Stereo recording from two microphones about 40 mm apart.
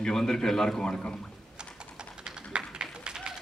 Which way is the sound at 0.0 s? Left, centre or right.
Centre.